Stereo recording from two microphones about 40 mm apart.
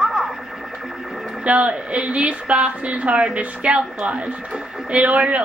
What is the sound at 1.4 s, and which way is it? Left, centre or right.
A woman's voice, right.